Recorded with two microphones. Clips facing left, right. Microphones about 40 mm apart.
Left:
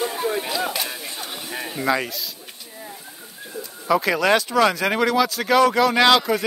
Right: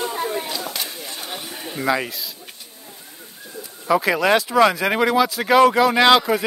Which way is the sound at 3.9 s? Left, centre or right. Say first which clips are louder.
Right 1 dB; centre.